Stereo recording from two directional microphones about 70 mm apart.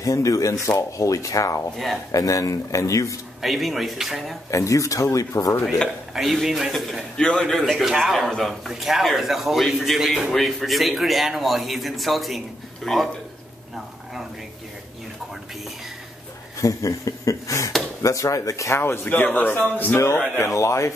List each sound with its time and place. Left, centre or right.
0.0 s speech: left
3.4 s speech: centre
4.5 s speech: left
6.1 s speech: centre
7.2 s speech: centre
16.6 s speech: left
18.8 s a man's voice: left
20.3 s speech: left